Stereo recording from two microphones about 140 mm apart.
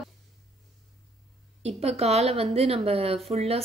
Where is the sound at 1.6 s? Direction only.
50° right (ahead or behind).